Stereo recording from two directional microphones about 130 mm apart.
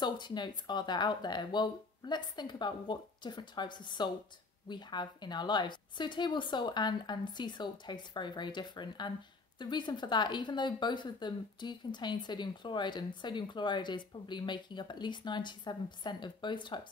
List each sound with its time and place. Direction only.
0.0 s speech: 35° left (ahead or behind)